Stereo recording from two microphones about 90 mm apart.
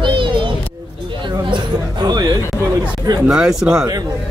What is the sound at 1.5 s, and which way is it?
Chatter, 55° right (ahead or behind).